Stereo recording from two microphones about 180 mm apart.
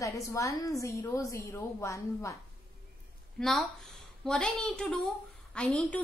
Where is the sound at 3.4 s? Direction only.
Centre (ahead or behind).